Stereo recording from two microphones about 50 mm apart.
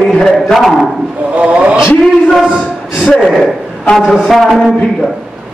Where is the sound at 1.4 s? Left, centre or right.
Right.